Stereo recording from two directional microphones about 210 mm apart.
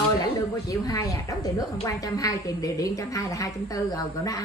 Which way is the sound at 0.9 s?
15° left (ahead or behind).